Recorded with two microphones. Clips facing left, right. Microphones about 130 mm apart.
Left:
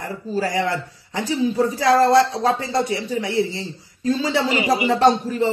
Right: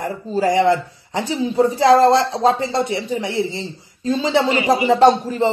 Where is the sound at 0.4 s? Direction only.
20° right (ahead or behind).